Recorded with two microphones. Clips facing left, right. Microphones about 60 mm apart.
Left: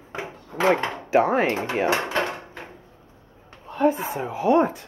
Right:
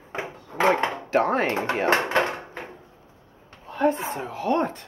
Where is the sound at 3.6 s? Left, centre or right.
Centre.